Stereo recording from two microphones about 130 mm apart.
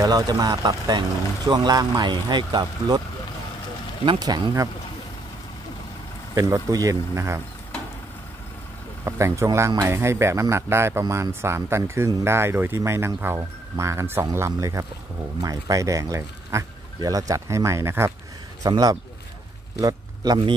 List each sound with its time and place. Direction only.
0.0 s speech: 30° right (ahead or behind)
4.0 s speech: 35° right (ahead or behind)
6.3 s speech: 25° right (ahead or behind)
9.0 s speech: 20° right (ahead or behind)
18.6 s speech: 30° right (ahead or behind)